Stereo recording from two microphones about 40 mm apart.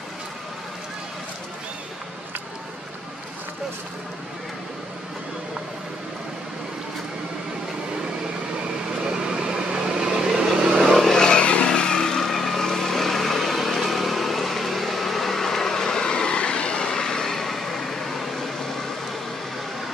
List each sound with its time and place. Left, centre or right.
9.0 s vehicle: right
10.8 s vehicle: centre
11.1 s vehicle: centre
11.3 s vehicle: left; by 18.9 s centre